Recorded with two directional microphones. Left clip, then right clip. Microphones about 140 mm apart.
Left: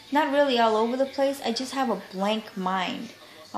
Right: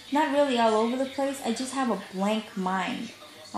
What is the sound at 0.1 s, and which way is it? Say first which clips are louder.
A woman's voice: left 2 dB; 10° left (ahead or behind).